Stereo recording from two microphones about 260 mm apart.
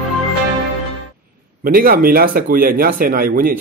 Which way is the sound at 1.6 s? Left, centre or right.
Right.